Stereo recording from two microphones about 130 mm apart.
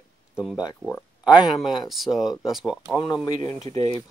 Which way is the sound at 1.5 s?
Centre (ahead or behind).